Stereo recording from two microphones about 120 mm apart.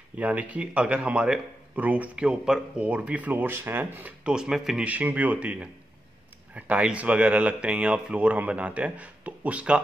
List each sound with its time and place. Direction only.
0.2 s speech: 10° right (ahead or behind)